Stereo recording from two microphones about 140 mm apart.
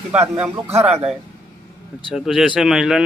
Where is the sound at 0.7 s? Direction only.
50° right (ahead or behind).